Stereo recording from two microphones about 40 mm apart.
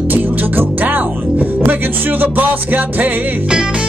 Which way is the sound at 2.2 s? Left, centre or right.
Right.